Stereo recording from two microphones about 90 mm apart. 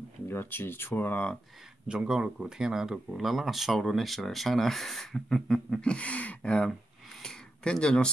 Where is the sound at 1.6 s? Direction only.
5° right (ahead or behind).